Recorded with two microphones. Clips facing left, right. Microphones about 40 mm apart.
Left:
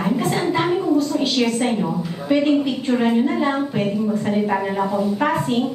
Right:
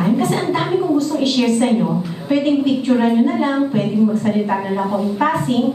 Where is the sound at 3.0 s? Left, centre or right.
Centre.